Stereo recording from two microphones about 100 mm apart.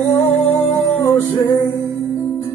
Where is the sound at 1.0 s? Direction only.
35° left (ahead or behind).